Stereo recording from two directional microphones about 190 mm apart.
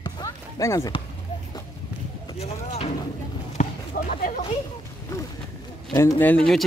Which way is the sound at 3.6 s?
45° left (ahead or behind).